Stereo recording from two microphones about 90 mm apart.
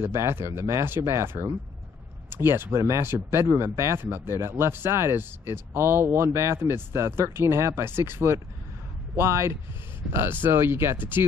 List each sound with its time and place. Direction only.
0.0 s speech: 30° right (ahead or behind)